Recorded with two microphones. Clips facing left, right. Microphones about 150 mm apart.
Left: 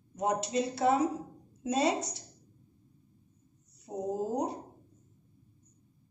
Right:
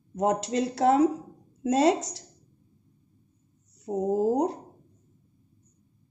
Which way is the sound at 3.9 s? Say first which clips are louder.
Right 8 dB; 65° right (ahead or behind).